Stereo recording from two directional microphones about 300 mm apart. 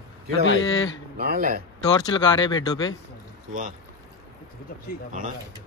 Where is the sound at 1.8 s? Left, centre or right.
Centre.